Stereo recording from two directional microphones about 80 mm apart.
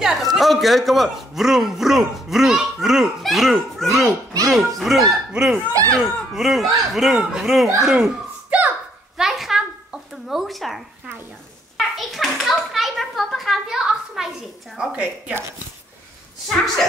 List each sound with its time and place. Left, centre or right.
0.0 s a man's voice: centre
5.7 s speech: right
6.3 s a man's voice: centre
9.1 s a sound: centre
10.2 s speech: centre
11.7 s a sound: centre
14.8 s a woman's voice: centre